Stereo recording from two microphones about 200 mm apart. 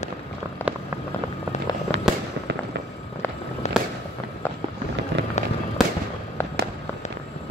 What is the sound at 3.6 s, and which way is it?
Fireworks, 35° left (ahead or behind).